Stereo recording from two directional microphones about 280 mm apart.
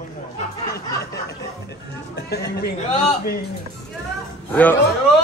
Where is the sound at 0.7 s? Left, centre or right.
Left.